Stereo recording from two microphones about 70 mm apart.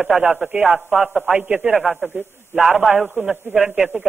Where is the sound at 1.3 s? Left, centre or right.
Right.